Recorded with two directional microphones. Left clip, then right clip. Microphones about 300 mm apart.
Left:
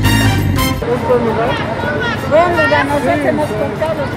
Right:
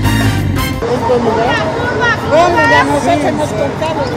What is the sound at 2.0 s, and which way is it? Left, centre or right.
Speech, right.